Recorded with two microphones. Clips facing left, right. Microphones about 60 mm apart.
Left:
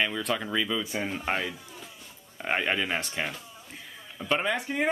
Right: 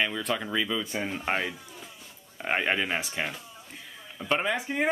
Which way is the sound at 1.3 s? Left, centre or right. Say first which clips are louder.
Right 2 dB; centre.